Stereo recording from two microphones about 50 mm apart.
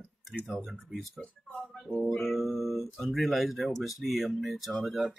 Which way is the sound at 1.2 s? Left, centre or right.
Centre.